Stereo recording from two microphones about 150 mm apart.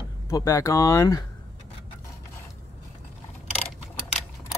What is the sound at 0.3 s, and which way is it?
Speech, 20° left (ahead or behind).